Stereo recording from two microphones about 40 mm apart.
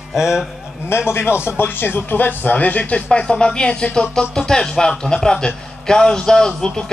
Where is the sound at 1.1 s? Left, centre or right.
Left.